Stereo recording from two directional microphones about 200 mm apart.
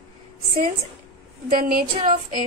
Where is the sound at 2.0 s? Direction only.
25° right (ahead or behind).